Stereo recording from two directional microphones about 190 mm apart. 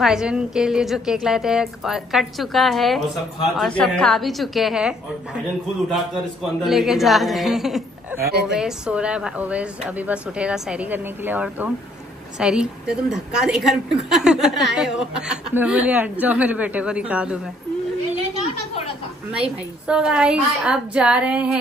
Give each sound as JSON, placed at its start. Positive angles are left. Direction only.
{"t": 0.0, "sound": "speech", "side_deg": -5}
{"t": 6.6, "sound": "speech", "side_deg": 0}
{"t": 8.3, "sound": "a woman's voice", "side_deg": -60}
{"t": 8.5, "sound": "speech", "side_deg": -5}
{"t": 19.9, "sound": "speech", "side_deg": -5}